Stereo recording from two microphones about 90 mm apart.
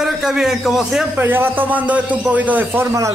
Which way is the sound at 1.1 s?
25° right (ahead or behind).